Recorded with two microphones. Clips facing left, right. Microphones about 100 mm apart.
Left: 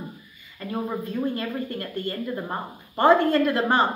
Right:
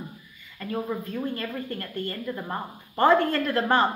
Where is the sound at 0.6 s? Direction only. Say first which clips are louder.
Even; 20° left (ahead or behind).